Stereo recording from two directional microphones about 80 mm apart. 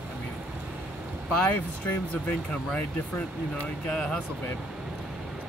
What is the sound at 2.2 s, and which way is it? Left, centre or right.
Speech, centre.